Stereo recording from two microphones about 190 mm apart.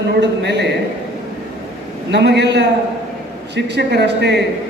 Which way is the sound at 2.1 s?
65° right (ahead or behind).